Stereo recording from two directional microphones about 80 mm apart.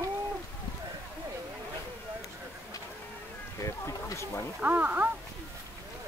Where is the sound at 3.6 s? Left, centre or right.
Left.